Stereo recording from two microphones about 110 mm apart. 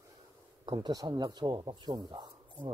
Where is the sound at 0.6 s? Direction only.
40° right (ahead or behind).